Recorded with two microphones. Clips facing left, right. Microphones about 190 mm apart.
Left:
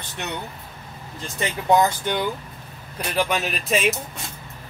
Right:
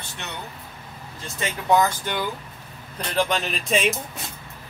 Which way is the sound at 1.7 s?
20° left (ahead or behind).